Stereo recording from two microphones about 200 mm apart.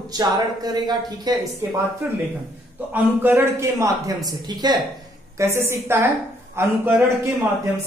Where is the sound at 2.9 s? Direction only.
10° right (ahead or behind).